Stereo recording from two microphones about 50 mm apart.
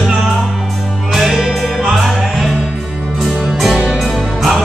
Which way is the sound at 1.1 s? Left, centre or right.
Centre.